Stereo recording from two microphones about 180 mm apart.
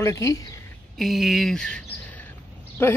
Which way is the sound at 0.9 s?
Centre (ahead or behind).